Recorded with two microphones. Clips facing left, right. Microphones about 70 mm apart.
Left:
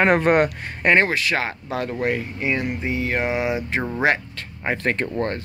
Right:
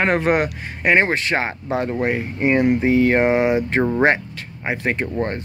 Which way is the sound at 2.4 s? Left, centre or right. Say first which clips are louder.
Right 12 dB; right.